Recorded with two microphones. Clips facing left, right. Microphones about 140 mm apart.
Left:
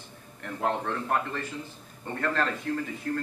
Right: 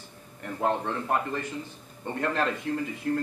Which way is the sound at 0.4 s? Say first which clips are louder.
Right 2 dB; 10° right (ahead or behind).